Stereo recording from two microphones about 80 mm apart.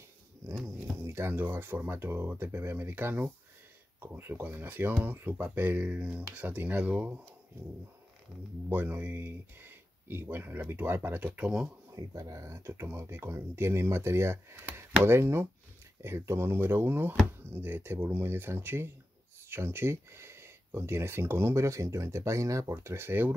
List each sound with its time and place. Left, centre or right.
1.0 s speech: right
8.6 s speech: right
11.3 s speech: centre
11.9 s speech: right